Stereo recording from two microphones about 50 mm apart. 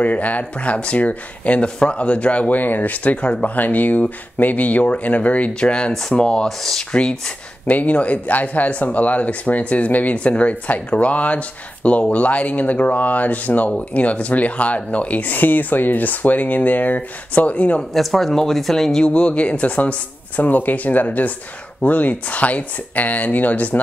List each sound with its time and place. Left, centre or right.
0.0 s speech: left
2.6 s speech: left
3.5 s speech: left; by 6.9 s centre
6.9 s speech: centre
17.9 s speech: centre
19.0 s speech: left